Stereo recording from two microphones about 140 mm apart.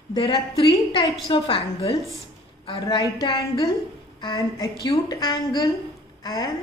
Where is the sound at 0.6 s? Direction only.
30° left (ahead or behind).